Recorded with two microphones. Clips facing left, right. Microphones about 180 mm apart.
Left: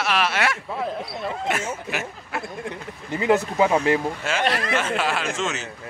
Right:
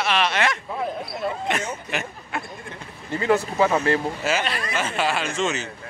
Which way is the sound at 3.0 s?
15° left (ahead or behind).